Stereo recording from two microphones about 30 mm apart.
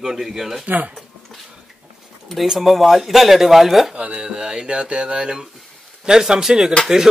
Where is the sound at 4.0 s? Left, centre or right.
Right.